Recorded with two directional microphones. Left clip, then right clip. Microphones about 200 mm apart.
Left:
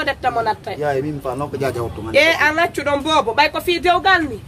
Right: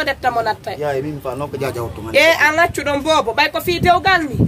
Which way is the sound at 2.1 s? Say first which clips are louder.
Right 2 dB; 20° right (ahead or behind).